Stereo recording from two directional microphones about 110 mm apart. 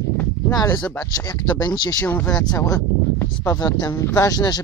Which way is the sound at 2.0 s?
15° left (ahead or behind).